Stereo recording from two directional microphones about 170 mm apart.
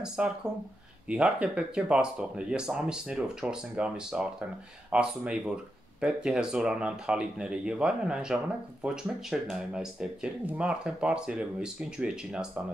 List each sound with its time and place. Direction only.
0.0 s speech: 5° right (ahead or behind)